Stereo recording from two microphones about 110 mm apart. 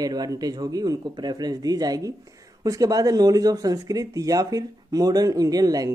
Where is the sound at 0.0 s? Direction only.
35° right (ahead or behind).